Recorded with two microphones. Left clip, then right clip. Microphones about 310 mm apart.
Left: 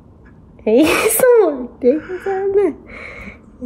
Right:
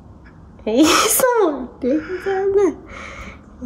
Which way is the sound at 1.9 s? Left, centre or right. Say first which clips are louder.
Even; centre.